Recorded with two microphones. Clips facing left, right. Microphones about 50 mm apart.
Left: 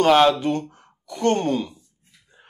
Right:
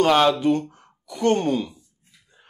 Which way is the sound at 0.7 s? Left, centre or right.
Centre.